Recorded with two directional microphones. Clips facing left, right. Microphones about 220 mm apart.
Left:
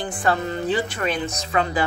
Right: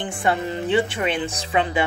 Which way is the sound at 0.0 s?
25° right (ahead or behind).